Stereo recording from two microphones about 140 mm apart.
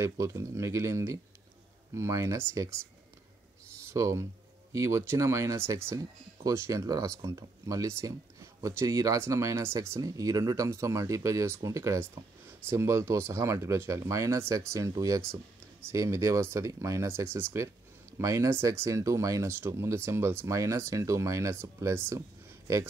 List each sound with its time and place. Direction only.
0.0 s speech: 20° right (ahead or behind)
3.9 s speech: 20° right (ahead or behind)